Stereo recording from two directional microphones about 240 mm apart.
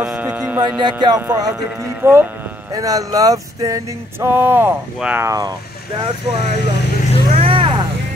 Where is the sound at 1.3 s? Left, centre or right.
Centre.